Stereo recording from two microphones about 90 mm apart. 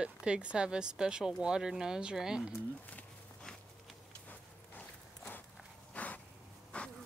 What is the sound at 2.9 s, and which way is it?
Walk, 15° left (ahead or behind).